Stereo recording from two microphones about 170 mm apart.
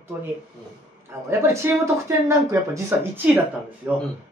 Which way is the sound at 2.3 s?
15° right (ahead or behind).